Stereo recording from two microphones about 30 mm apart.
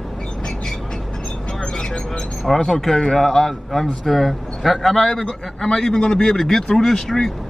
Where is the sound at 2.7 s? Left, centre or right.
Centre.